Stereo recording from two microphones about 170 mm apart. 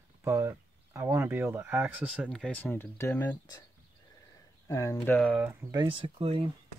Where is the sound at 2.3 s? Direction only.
5° left (ahead or behind).